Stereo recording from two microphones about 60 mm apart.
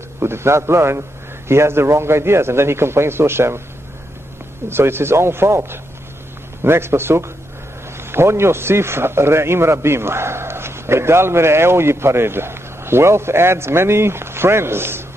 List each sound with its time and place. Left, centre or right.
0.2 s a man's voice: right
4.6 s a man's voice: right